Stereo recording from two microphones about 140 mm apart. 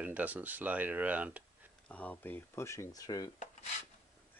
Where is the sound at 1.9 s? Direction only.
10° left (ahead or behind).